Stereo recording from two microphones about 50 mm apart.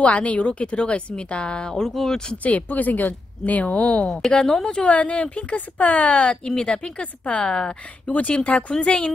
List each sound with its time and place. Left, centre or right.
0.0 s a woman's voice: left; by 2.3 s centre
2.3 s a woman's voice: left
4.1 s a woman's voice: centre
8.1 s a woman's voice: left